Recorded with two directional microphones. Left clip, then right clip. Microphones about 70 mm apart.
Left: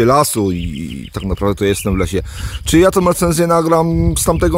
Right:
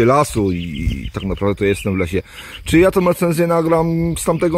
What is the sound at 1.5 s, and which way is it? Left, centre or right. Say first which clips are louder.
Speech: left 1 dB; left.